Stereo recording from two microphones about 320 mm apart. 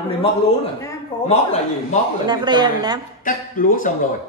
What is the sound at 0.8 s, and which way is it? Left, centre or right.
Speech, centre.